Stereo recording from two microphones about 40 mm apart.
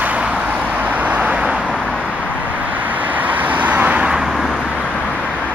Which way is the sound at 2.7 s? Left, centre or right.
Right.